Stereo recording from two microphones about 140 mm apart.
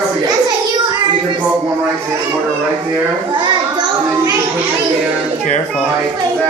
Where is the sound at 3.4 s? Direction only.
30° right (ahead or behind).